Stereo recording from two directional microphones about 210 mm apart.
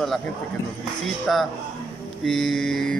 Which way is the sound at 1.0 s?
Centre (ahead or behind).